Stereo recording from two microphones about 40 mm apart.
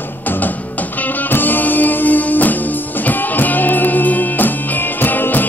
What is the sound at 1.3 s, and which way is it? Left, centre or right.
Music, left.